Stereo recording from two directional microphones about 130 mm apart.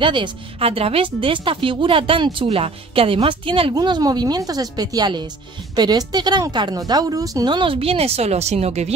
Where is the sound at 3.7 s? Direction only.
30° right (ahead or behind).